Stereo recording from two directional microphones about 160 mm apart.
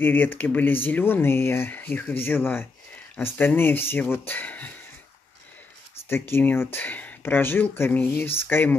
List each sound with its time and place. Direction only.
0.0 s speech: 10° left (ahead or behind)
6.3 s speech: 15° left (ahead or behind)